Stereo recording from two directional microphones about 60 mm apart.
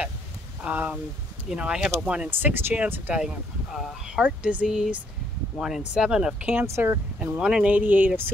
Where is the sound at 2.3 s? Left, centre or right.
Right.